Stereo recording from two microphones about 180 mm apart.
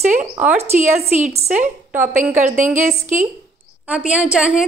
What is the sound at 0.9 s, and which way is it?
A woman's voice, 40° right (ahead or behind).